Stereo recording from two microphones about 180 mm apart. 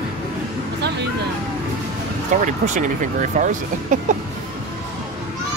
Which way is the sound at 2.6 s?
45° right (ahead or behind).